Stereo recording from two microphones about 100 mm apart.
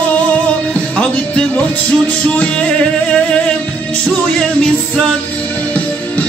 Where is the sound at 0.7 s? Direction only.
10° left (ahead or behind).